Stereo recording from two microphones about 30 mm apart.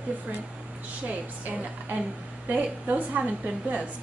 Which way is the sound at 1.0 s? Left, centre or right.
Right.